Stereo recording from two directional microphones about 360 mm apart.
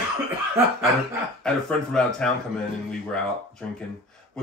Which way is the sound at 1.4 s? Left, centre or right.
Centre.